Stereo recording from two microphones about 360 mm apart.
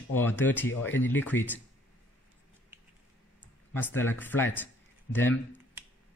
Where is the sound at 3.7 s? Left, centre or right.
Centre.